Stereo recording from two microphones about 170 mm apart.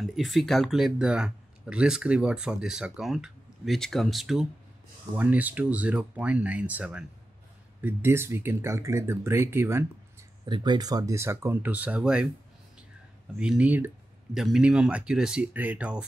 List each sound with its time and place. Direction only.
0.0 s speech: centre (ahead or behind)
10.4 s speech: 25° right (ahead or behind); by 12.3 s 5° right (ahead or behind)
13.4 s speech: 5° right (ahead or behind)